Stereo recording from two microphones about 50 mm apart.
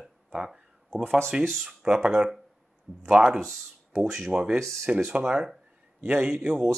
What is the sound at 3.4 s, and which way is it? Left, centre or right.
Speech, centre.